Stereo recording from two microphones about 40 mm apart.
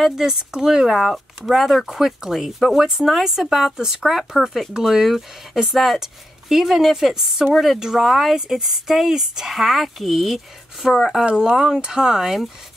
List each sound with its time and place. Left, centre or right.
0.0 s speech: centre
9.5 s speech: centre
11.3 s speech: centre